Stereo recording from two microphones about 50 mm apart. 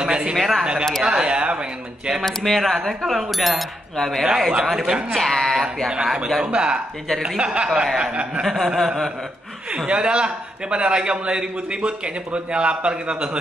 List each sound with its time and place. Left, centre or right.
0.0 s speech: centre
0.4 s speech: centre
1.0 s speech: centre
2.2 s speech: centre
4.2 s speech: centre
6.4 s a man's voice: centre
8.5 s speech: centre
9.8 s a man's voice: centre